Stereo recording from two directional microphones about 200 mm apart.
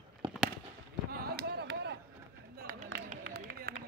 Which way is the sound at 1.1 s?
50° right (ahead or behind).